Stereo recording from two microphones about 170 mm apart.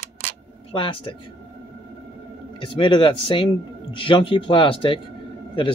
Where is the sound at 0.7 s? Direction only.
30° left (ahead or behind).